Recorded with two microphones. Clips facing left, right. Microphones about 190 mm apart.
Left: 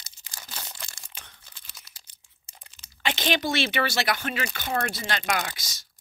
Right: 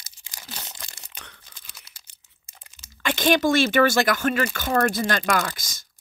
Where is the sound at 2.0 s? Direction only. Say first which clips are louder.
Right 1 dB; 30° left (ahead or behind).